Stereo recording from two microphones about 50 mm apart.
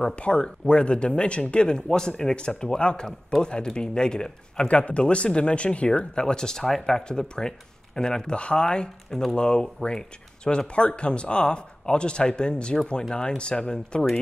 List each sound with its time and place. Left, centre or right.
0.1 s speech: left; by 7.0 s centre
7.1 s speech: centre